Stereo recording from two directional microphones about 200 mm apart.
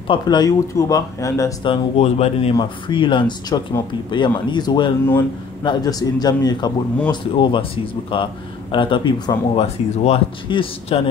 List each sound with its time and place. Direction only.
0.1 s speech: 20° left (ahead or behind)